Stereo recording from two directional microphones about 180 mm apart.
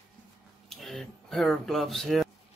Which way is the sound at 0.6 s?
Centre (ahead or behind).